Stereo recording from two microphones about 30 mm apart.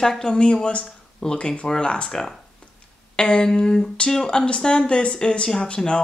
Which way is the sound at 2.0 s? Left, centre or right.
Centre.